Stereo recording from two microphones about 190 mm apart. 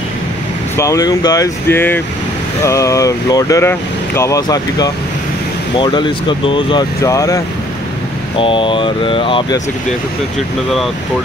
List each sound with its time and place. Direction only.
0.7 s speech: 15° left (ahead or behind)
8.4 s speech: 25° left (ahead or behind)